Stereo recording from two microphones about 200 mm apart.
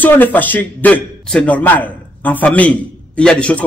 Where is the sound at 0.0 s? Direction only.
10° left (ahead or behind).